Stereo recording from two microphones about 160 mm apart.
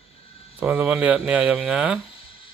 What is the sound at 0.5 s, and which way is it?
Speech, 10° right (ahead or behind).